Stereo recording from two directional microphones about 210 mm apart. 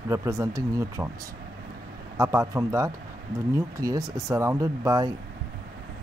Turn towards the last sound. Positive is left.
turn(degrees=-15)  # may be behind; listen again after turning